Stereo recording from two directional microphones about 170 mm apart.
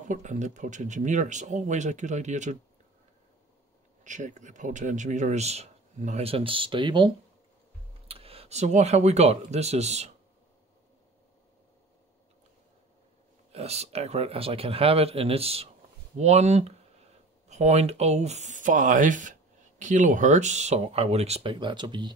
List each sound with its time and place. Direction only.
0.1 s speech: 45° right (ahead or behind)
4.0 s speech: 45° right (ahead or behind); by 7.1 s 30° right (ahead or behind)
8.1 s speech: 35° right (ahead or behind)
13.5 s speech: 40° right (ahead or behind)